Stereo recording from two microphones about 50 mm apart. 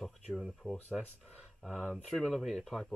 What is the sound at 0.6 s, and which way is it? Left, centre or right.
Speech, centre.